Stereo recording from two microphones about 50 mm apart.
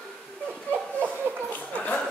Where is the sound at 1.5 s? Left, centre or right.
Left.